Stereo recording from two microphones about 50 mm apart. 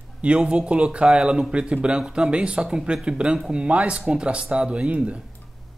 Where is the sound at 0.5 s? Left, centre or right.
Centre.